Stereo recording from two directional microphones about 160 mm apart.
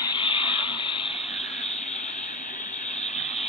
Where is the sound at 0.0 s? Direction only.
30° left (ahead or behind).